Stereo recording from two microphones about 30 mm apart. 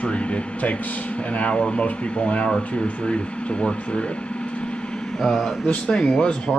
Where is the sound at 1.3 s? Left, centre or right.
Left.